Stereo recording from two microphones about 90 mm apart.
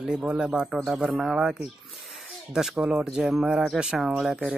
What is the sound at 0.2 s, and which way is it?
Speech, 10° right (ahead or behind).